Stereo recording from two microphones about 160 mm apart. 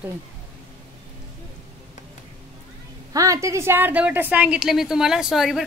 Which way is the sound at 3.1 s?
20° right (ahead or behind).